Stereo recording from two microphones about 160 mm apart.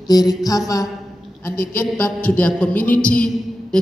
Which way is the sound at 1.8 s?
15° left (ahead or behind).